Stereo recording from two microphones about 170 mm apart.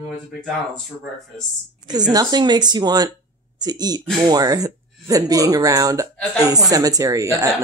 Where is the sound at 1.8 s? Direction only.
25° right (ahead or behind).